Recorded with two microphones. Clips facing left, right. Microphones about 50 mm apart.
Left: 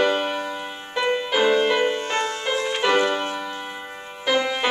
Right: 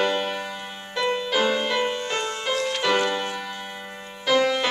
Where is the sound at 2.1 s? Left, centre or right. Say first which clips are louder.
Left 2 dB; left.